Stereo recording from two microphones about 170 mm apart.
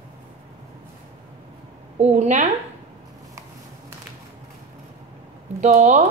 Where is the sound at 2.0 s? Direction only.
45° right (ahead or behind).